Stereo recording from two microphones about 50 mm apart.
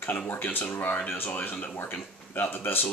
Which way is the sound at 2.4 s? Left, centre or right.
Left.